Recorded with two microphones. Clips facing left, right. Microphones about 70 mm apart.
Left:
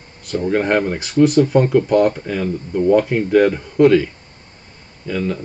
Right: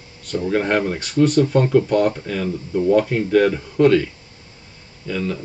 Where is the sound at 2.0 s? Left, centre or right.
Left.